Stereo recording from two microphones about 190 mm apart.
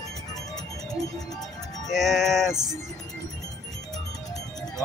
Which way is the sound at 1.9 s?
Centre (ahead or behind).